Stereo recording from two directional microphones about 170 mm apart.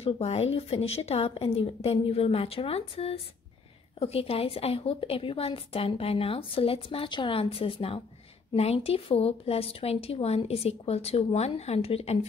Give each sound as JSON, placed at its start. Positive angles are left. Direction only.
{"t": 0.0, "sound": "a woman's voice", "side_deg": 35}